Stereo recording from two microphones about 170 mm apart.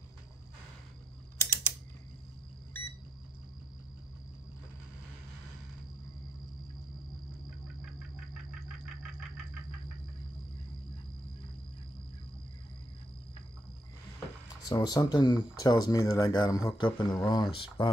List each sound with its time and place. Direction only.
1.4 s typing: 15° left (ahead or behind)
14.7 s speech: 25° left (ahead or behind)